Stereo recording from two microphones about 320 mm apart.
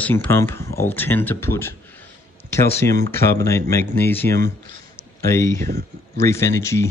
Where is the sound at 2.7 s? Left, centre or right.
Centre.